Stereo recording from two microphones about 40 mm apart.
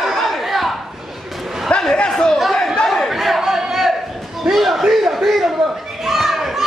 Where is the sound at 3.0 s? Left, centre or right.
Centre.